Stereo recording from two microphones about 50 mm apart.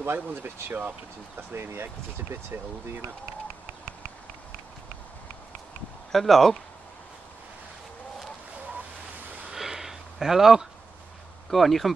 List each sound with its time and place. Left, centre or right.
0.0 s speech: right
0.7 s speech: right
1.5 s speech: right
6.1 s speech: centre
9.5 s a sound: centre
11.5 s speech: centre